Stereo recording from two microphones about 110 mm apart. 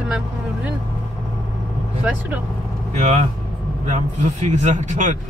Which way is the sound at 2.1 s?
15° right (ahead or behind).